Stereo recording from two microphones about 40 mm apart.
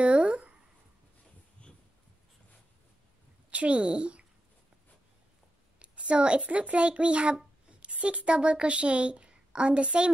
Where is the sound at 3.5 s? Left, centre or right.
Right.